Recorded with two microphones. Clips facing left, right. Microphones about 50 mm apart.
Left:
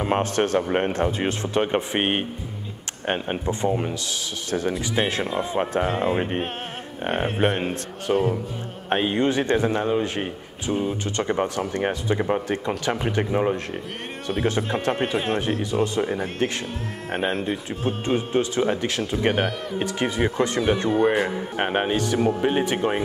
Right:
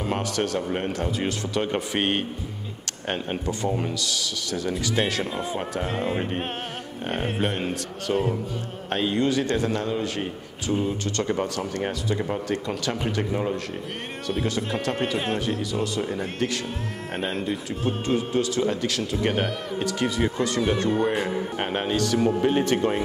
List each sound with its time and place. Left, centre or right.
0.0 s a man's voice: left
5.0 s a man's voice: centre
5.9 s speech: centre
8.1 s speech: centre
8.8 s a man's voice: left
14.9 s speech: centre
15.1 s speech: centre
15.6 s a man's voice: left
16.1 s speech: centre
17.3 s speech: centre
18.0 s a man's voice: left
21.1 s speech: centre
21.5 s a man's voice: left